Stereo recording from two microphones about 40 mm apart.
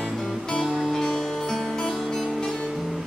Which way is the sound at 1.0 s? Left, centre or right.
Centre.